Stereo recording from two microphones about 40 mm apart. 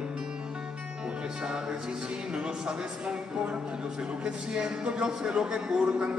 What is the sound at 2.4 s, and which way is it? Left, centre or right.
A man's voice, right.